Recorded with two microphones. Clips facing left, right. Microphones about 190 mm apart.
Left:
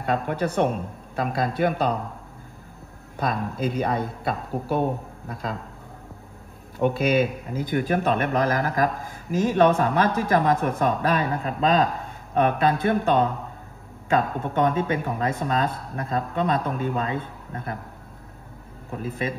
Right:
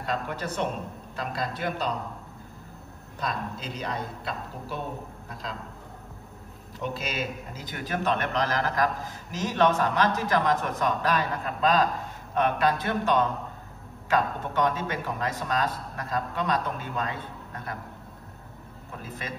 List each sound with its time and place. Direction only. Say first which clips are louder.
0.0 s speech: left 6 dB; 55° left (ahead or behind)
3.2 s speech: left 7 dB; 55° left (ahead or behind)
6.8 s speech: left 11 dB; 55° left (ahead or behind)